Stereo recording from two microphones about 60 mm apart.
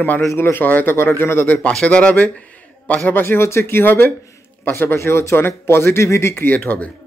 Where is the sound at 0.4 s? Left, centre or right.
Left.